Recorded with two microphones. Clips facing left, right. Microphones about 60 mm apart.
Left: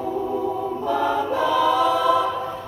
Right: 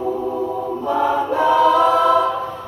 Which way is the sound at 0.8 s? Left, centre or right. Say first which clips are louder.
Right 4 dB; right.